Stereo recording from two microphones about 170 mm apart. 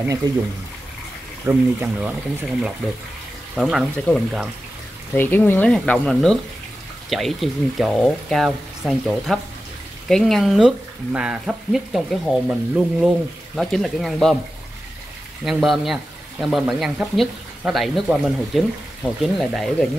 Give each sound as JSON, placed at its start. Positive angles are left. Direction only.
{"t": 0.0, "sound": "speech", "side_deg": -20}
{"t": 1.4, "sound": "speech", "side_deg": -10}
{"t": 5.1, "sound": "speech", "side_deg": 10}
{"t": 15.4, "sound": "speech", "side_deg": 0}